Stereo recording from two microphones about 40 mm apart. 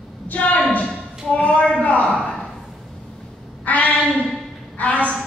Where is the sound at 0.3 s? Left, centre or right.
Left.